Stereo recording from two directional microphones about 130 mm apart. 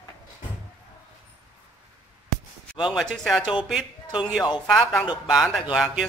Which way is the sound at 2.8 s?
Centre (ahead or behind).